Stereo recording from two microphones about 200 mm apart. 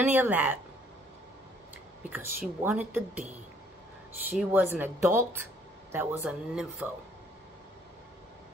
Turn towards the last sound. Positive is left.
turn(degrees=-5)  # may be behind; listen again after turning